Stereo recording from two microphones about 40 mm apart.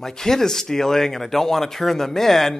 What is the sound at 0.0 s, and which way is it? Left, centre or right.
Speech, centre.